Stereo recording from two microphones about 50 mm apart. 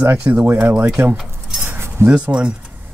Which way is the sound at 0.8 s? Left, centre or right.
Right.